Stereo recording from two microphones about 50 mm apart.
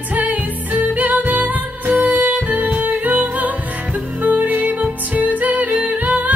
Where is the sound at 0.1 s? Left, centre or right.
Right.